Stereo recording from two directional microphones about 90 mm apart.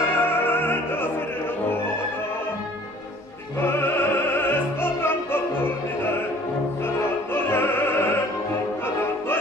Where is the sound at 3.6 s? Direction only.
25° left (ahead or behind).